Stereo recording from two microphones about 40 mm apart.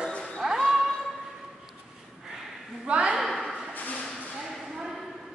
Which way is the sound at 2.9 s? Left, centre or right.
Right.